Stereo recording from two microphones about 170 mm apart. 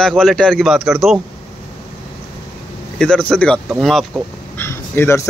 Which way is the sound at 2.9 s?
5° left (ahead or behind).